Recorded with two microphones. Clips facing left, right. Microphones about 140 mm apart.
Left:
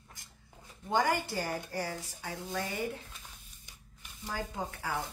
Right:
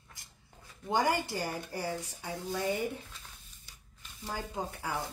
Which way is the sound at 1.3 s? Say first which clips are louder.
Left 1 dB; 15° right (ahead or behind).